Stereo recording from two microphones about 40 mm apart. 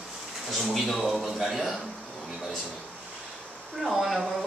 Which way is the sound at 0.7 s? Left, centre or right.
Centre.